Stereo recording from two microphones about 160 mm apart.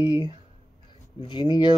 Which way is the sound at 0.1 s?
25° left (ahead or behind).